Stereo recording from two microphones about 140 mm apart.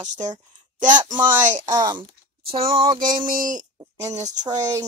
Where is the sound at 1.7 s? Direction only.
30° right (ahead or behind).